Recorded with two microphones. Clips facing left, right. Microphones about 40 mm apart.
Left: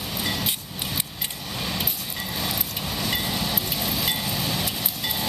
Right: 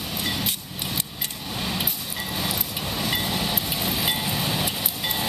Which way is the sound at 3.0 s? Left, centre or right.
Centre.